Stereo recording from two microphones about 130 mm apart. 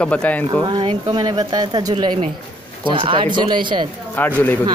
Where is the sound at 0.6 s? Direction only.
35° right (ahead or behind).